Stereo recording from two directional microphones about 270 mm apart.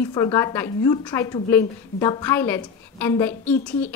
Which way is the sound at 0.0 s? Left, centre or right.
Centre.